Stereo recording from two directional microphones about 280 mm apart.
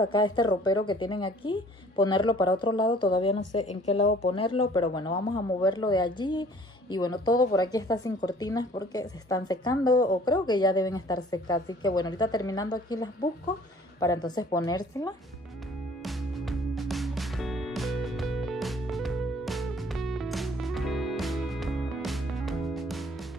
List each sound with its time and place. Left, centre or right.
0.0 s a woman's voice: centre
16.0 s music: centre